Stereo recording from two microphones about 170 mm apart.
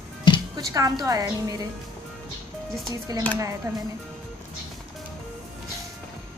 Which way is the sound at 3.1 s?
20° right (ahead or behind).